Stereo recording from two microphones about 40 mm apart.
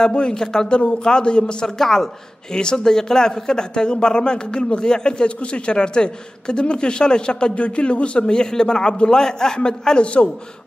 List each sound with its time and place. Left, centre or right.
0.0 s speech: centre